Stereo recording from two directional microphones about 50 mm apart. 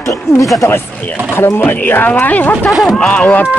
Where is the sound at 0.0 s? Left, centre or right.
Left.